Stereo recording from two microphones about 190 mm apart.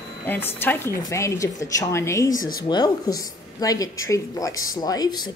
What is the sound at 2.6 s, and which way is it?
A woman's voice, 20° left (ahead or behind).